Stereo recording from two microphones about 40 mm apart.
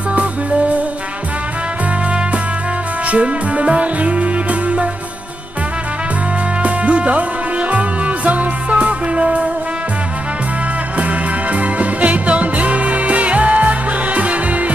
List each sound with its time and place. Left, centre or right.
0.1 s music: right
3.1 s music: right
6.6 s music: right
11.0 s music: right